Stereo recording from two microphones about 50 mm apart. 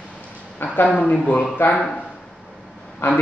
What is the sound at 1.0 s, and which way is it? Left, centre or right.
Speech, left.